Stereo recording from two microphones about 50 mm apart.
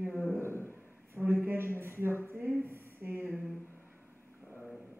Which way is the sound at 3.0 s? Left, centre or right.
Right.